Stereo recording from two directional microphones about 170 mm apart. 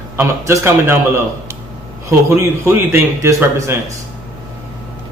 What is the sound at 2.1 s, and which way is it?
A man's voice, 15° right (ahead or behind).